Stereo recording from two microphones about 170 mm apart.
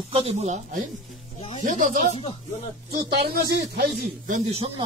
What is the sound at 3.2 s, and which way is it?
Speech, 70° right (ahead or behind).